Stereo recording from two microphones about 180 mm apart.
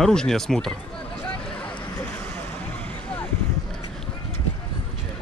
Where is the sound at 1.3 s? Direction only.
5° left (ahead or behind).